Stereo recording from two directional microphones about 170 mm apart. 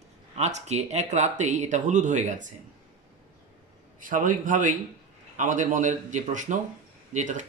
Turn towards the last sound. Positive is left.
turn(degrees=-45)  # may be behind; listen again after turning